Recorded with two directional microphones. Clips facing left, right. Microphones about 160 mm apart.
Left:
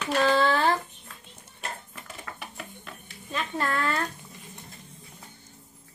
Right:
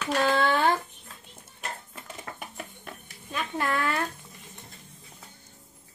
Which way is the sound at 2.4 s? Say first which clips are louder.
Right 1 dB; 45° right (ahead or behind).